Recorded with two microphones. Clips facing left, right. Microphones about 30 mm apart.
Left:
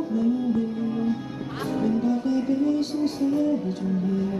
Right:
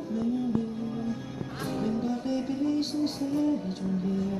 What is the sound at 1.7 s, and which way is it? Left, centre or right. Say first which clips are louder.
Music: left 6 dB; centre.